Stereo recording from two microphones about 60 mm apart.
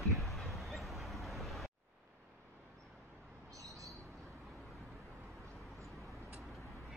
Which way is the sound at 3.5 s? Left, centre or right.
Right.